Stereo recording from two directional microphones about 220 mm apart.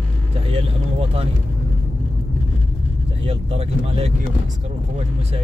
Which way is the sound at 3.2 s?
25° right (ahead or behind).